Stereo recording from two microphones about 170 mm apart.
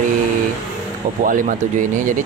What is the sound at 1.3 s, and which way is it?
Speech, 50° right (ahead or behind).